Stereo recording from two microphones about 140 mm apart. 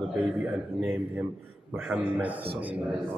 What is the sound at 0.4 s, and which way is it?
A man's voice, centre (ahead or behind).